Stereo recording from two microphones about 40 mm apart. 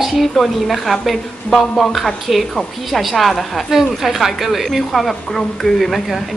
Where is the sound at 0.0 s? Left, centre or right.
Centre.